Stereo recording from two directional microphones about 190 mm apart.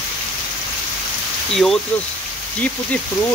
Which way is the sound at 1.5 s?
Centre (ahead or behind).